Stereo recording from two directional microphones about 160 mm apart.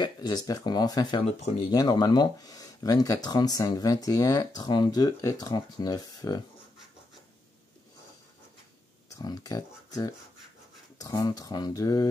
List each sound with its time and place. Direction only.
0.0 s speech: 25° left (ahead or behind)
9.1 s speech: 25° left (ahead or behind)